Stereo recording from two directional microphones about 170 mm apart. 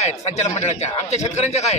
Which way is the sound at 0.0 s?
40° left (ahead or behind).